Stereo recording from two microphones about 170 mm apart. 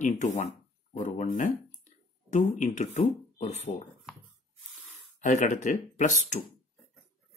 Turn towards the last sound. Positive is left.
turn(degrees=45)  # may be behind; listen again after turning